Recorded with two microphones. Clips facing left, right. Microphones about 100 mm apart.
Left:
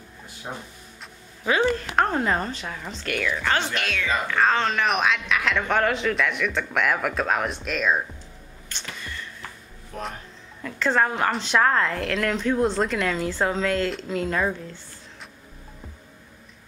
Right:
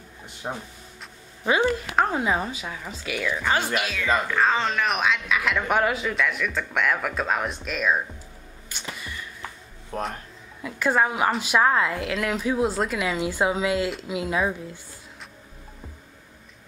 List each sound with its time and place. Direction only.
1.4 s a woman's voice: 10° right (ahead or behind)
8.6 s a sound: 10° right (ahead or behind)
9.9 s speech: 40° right (ahead or behind)
10.6 s a woman's voice: 10° right (ahead or behind)